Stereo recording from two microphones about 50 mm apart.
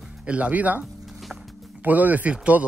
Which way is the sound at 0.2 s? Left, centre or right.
Right.